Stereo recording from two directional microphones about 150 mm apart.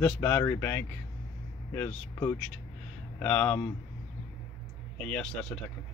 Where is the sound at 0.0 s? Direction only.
10° left (ahead or behind).